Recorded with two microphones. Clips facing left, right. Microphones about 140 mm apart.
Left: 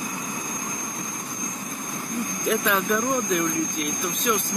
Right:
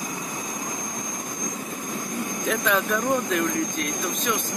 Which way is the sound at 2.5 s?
5° left (ahead or behind).